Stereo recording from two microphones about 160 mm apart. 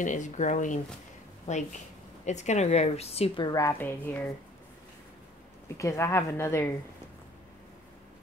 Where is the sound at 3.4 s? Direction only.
20° left (ahead or behind).